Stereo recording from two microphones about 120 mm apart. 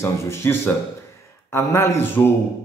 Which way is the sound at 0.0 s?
25° left (ahead or behind).